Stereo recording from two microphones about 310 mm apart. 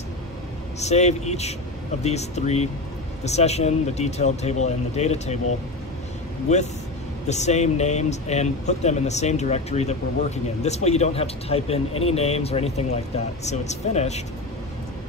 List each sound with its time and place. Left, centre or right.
0.7 s speech: left
6.5 s speech: left